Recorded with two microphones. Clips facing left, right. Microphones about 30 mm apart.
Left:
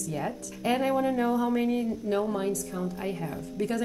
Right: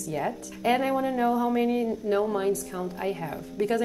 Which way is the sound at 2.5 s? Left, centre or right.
Right.